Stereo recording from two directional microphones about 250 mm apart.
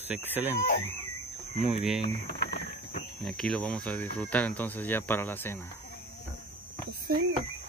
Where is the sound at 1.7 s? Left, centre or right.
Centre.